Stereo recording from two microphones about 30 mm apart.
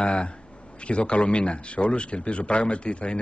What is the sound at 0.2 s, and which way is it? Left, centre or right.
A man's voice, left.